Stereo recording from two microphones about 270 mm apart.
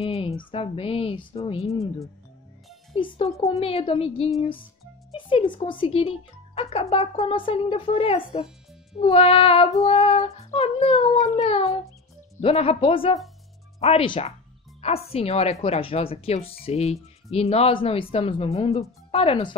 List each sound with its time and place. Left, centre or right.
0.0 s a woman's voice: left